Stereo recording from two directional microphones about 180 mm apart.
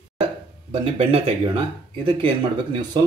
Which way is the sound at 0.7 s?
30° right (ahead or behind).